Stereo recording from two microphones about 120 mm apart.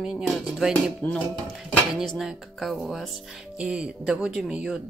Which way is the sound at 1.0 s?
10° left (ahead or behind).